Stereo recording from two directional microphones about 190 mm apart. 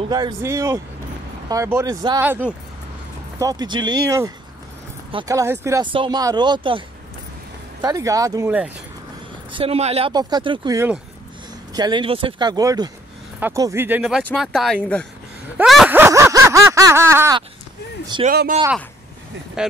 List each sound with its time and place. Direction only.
0.1 s speech: 15° right (ahead or behind)
5.3 s speech: 15° right (ahead or behind)
7.8 s speech: 15° right (ahead or behind)
8.5 s speech: 5° right (ahead or behind)
9.5 s speech: 30° right (ahead or behind); by 15.0 s 5° left (ahead or behind)
15.5 s a sound: centre (ahead or behind)
18.2 s speech: 45° right (ahead or behind)